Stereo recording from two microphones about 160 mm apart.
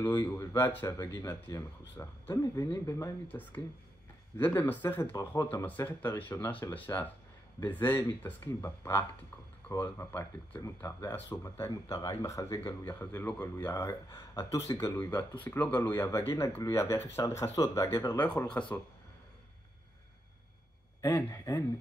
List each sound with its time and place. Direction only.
0.1 s speech: 20° left (ahead or behind)
18.2 s speech: 10° left (ahead or behind)
21.0 s speech: 20° left (ahead or behind)